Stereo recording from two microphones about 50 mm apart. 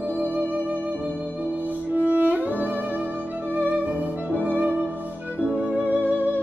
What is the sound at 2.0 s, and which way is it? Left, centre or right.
Music, right.